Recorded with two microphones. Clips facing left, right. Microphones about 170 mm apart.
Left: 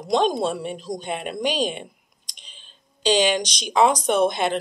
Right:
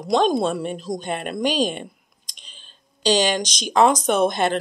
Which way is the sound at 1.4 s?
45° right (ahead or behind).